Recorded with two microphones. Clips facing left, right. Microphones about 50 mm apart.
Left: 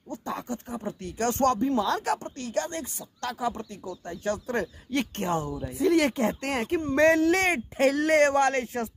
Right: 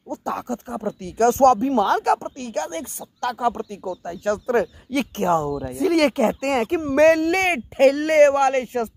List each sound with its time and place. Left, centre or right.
0.1 s speech: right
5.7 s speech: right